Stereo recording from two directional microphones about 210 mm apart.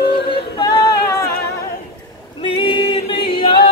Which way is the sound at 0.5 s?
20° left (ahead or behind).